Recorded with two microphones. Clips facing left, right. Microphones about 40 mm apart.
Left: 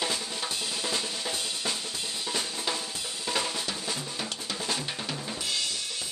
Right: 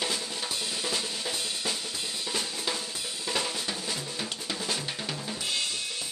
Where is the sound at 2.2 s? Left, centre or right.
Centre.